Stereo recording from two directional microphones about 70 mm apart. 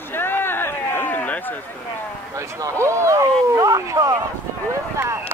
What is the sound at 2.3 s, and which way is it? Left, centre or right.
Speech, right.